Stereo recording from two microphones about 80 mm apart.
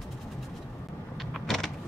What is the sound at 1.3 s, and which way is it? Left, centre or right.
Vehicle, centre.